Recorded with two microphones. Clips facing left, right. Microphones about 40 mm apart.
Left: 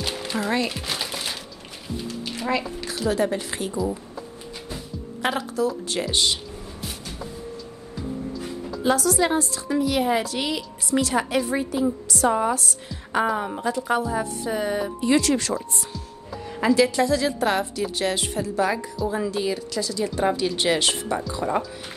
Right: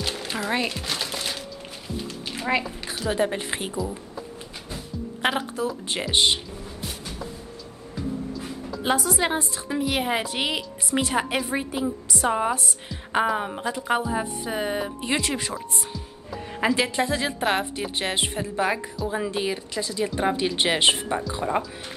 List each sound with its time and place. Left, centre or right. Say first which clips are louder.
0.0 s music: left 1 dB; centre
0.7 s crumpling: even; centre
2.3 s a sound: right 1 dB; right
3.1 s a woman's voice: left 1 dB; right
5.2 s a woman's voice: left 1 dB; right
6.8 s a sound: even; centre
8.8 s a woman's voice: left 3 dB; right
21.4 s speech: left 1 dB; centre